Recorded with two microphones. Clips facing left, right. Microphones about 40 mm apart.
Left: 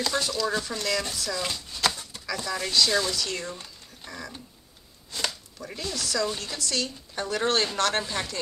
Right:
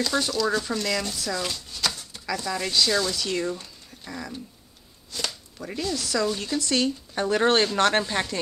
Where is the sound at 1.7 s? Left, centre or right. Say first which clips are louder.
Left 2 dB; centre.